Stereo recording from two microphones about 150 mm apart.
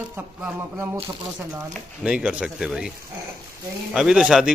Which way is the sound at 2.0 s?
5° right (ahead or behind).